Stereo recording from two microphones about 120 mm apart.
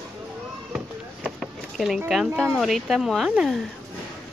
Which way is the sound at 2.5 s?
Centre (ahead or behind).